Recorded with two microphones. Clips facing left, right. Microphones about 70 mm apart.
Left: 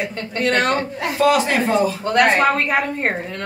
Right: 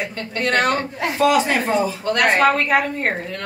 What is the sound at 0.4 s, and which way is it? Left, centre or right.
Speech, centre.